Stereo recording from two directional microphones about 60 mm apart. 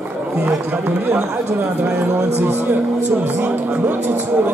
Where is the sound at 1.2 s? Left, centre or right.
Right.